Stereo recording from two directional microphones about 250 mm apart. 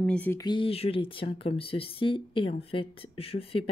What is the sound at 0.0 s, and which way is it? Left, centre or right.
Speech, centre.